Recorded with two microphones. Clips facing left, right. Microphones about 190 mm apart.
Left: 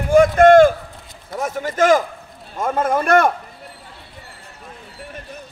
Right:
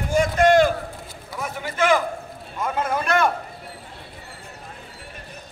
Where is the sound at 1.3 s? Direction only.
45° left (ahead or behind).